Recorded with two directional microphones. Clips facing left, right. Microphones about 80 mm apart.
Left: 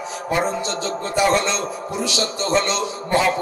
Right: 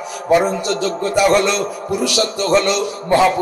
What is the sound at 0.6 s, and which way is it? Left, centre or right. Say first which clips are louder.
A man's voice: right 6 dB; left.